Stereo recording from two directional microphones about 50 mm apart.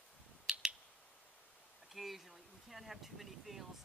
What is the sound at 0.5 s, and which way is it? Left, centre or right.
Finger snapping, centre.